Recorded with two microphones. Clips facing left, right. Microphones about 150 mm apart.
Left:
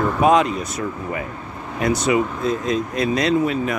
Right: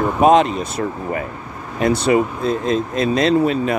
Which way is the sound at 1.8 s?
30° right (ahead or behind).